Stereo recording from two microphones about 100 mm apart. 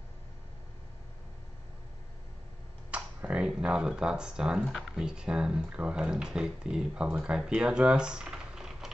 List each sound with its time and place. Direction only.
2.9 s speech: 15° right (ahead or behind)